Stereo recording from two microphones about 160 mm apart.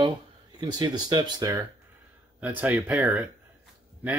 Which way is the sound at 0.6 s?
25° right (ahead or behind).